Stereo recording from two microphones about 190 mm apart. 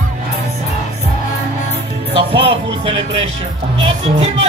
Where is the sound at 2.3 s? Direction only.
30° right (ahead or behind).